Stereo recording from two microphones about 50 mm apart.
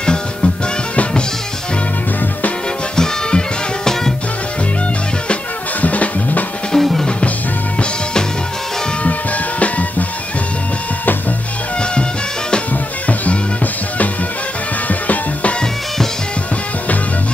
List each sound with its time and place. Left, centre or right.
0.0 s music: centre
3.0 s music: centre
5.3 s music: left
6.7 s music: centre
7.1 s music: left
9.0 s music: left
11.8 s music: centre
14.9 s music: left